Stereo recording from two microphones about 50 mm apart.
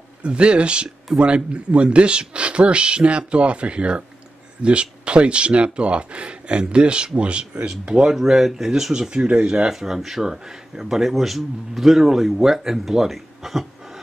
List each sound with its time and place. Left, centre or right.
0.2 s speech: right
9.7 s speech: centre